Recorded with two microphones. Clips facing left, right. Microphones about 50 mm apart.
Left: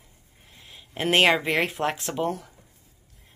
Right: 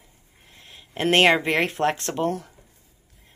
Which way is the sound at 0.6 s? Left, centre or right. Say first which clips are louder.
Right 3 dB; centre.